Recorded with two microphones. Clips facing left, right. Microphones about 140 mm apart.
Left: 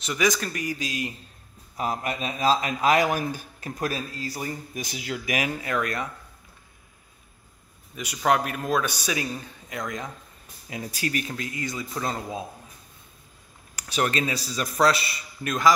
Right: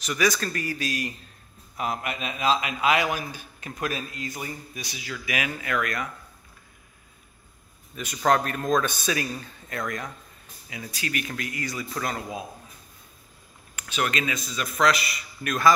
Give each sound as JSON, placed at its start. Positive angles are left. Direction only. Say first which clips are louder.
{"t": 0.0, "sound": "speech", "louder": "even", "side_deg": 20}
{"t": 1.8, "sound": "a man's voice", "louder": "left 2 dB", "side_deg": 35}
{"t": 5.5, "sound": "a man's voice", "louder": "left 1 dB", "side_deg": 30}
{"t": 7.9, "sound": "a man's voice", "louder": "right 1 dB", "side_deg": 10}
{"t": 10.7, "sound": "a man's voice", "louder": "left 3 dB", "side_deg": 40}
{"t": 11.2, "sound": "speech", "louder": "left 1 dB", "side_deg": 25}
{"t": 13.7, "sound": "a man's voice", "louder": "left 2 dB", "side_deg": 35}